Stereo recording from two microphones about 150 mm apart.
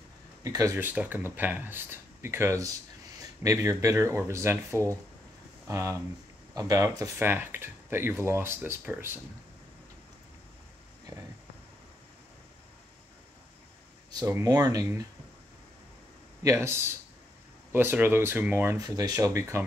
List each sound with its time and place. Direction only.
0.4 s speech: 25° right (ahead or behind)
14.2 s speech: 20° right (ahead or behind)
16.4 s speech: 15° right (ahead or behind)
18.8 s speech: 25° right (ahead or behind)